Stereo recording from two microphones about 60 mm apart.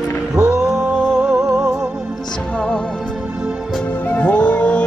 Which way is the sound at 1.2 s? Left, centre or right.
Centre.